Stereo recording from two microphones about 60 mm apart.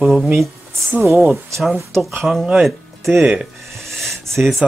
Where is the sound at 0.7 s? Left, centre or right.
Right.